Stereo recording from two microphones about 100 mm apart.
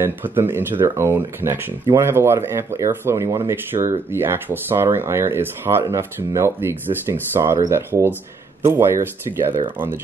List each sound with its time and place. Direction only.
0.0 s speech: 20° right (ahead or behind)